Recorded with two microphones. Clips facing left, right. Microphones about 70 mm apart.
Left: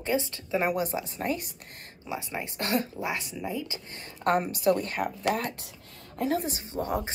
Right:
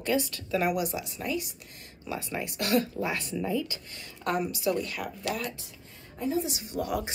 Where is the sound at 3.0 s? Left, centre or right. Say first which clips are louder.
Right 2 dB; centre.